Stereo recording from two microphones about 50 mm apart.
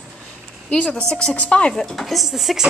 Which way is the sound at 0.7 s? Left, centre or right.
Left.